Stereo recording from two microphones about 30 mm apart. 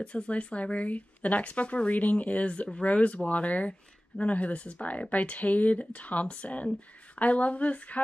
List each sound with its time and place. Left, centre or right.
0.0 s speech: left
2.4 s speech: left